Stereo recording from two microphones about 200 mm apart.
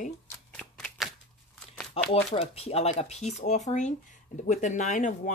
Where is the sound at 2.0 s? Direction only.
30° left (ahead or behind).